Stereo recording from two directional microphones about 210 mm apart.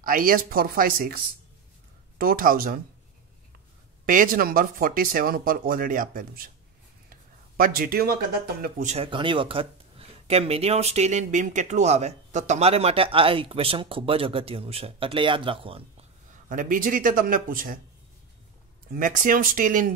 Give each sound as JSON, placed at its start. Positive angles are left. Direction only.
{"t": 0.0, "sound": "speech", "side_deg": -40}
{"t": 4.0, "sound": "speech", "side_deg": -40}
{"t": 7.5, "sound": "speech", "side_deg": -45}
{"t": 16.4, "sound": "speech", "side_deg": -40}
{"t": 18.9, "sound": "speech", "side_deg": -40}